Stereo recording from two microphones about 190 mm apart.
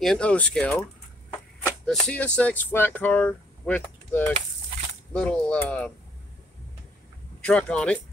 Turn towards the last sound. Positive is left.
turn(degrees=5)  # may be behind; listen again after turning